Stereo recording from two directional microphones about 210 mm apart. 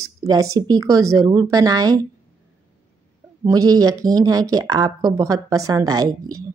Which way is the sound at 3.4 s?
15° right (ahead or behind).